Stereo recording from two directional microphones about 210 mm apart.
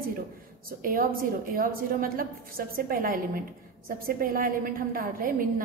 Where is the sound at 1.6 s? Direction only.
45° right (ahead or behind).